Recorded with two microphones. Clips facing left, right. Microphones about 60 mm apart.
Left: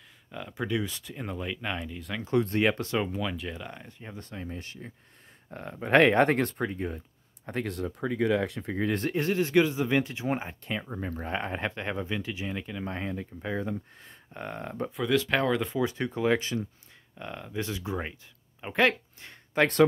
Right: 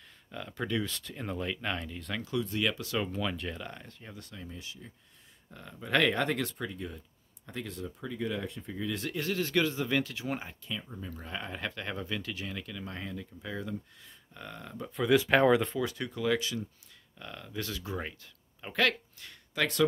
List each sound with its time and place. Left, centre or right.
0.3 s speech: centre
2.3 s speech: left
3.0 s speech: centre
4.0 s speech: left
7.4 s speech: left
9.0 s speech: left
10.6 s speech: left
15.1 s speech: centre
15.8 s speech: left
17.2 s speech: left